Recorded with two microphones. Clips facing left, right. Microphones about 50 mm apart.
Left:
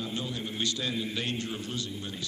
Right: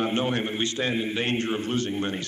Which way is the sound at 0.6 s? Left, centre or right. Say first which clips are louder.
Right 5 dB; right.